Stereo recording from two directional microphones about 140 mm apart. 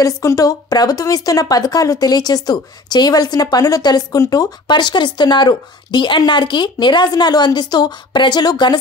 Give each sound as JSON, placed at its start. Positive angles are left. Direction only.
{"t": 0.0, "sound": "speech", "side_deg": 25}